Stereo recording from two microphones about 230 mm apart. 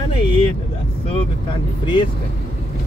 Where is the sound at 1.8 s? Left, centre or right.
Centre.